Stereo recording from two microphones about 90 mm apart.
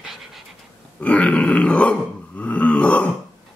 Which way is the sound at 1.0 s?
15° left (ahead or behind).